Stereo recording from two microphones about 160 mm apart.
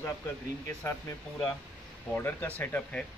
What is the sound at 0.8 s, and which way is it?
Speech, 15° left (ahead or behind).